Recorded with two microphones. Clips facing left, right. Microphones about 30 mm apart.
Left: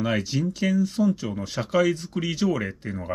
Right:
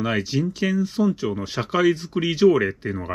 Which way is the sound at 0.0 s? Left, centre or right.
Centre.